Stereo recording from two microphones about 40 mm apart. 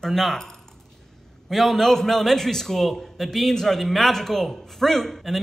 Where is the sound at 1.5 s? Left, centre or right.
Centre.